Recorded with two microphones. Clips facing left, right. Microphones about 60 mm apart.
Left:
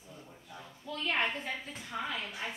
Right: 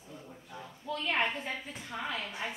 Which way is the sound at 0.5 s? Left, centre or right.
Centre.